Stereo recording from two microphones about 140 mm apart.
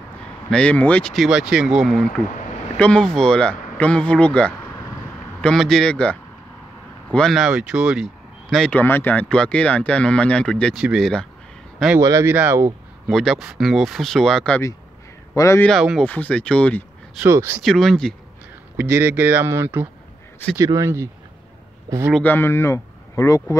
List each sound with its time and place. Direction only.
0.5 s speech: 10° left (ahead or behind)
12.0 s speech: 20° right (ahead or behind)
13.1 s speech: centre (ahead or behind)
15.3 s a man's voice: 20° left (ahead or behind)
15.6 s speech: centre (ahead or behind)
17.2 s speech: 20° right (ahead or behind)
17.6 s speech: centre (ahead or behind)
18.8 s speech: 15° right (ahead or behind)
22.2 s speech: 15° left (ahead or behind)